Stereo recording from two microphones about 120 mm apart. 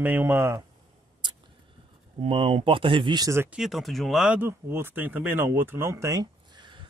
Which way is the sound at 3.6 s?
Centre (ahead or behind).